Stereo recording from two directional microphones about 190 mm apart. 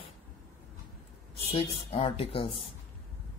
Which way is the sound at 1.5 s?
30° left (ahead or behind).